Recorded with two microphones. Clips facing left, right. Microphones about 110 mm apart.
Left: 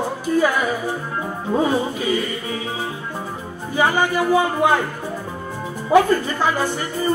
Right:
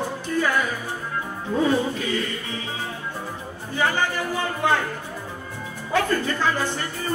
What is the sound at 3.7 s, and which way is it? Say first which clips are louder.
A woman's voice: left 5 dB; 15° left (ahead or behind).